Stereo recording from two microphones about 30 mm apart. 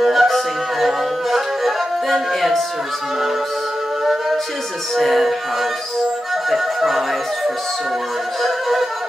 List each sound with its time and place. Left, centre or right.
0.0 s music: centre
4.0 s music: centre
8.4 s music: centre